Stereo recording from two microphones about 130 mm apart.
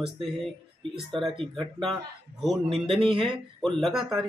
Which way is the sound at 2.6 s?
45° right (ahead or behind).